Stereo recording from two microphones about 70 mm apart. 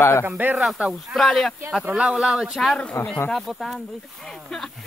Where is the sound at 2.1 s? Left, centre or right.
Centre.